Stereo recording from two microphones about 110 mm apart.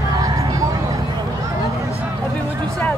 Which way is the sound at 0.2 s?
30° right (ahead or behind).